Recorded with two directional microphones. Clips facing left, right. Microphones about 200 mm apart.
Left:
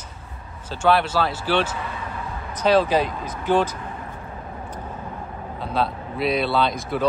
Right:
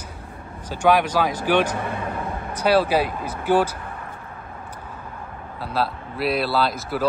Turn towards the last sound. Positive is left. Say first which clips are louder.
# left 1 dB
turn(degrees=-5)  # may be behind; listen again after turning